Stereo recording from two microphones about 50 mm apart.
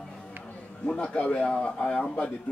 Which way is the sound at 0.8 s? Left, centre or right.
Left.